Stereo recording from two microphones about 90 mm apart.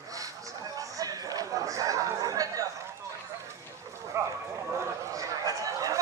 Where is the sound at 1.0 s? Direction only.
40° right (ahead or behind).